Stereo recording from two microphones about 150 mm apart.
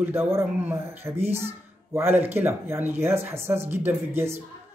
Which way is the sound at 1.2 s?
45° right (ahead or behind).